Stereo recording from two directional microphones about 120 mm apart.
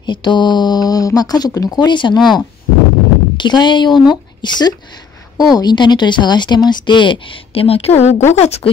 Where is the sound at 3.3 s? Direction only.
40° left (ahead or behind).